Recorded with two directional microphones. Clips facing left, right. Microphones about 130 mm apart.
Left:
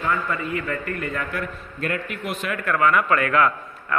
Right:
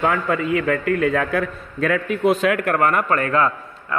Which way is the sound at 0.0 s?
90° right.